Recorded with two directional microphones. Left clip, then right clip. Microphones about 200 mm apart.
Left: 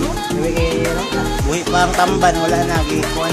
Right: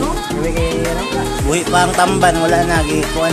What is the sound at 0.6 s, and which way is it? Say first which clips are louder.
Music: even; centre (ahead or behind).